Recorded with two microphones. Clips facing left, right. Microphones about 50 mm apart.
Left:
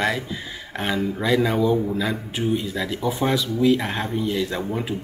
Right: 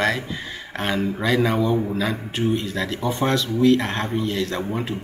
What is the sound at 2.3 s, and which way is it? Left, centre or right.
Speech, centre.